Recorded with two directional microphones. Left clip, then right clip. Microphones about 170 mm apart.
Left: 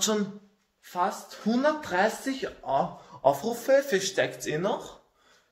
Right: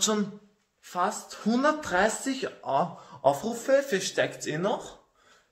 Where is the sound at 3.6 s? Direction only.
5° left (ahead or behind).